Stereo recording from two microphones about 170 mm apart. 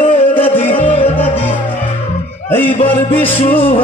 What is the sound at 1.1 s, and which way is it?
Music, 10° left (ahead or behind).